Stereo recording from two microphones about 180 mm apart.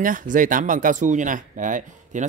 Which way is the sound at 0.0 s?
50° right (ahead or behind).